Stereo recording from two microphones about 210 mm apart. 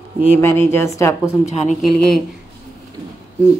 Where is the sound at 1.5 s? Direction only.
35° left (ahead or behind).